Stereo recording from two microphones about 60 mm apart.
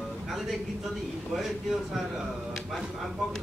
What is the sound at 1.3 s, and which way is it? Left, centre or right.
Speech, centre.